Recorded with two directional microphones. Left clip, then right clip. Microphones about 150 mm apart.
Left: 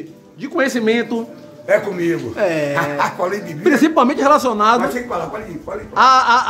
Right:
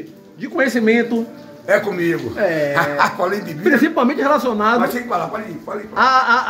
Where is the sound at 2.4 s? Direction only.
10° left (ahead or behind).